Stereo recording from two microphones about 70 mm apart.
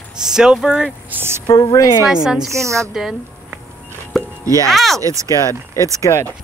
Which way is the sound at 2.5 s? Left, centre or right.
Right.